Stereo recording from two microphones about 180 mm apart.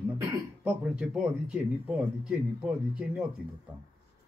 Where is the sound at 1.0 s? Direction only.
5° right (ahead or behind).